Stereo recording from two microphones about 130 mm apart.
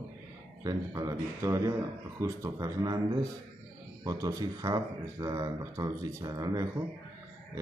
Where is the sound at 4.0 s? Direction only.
25° right (ahead or behind).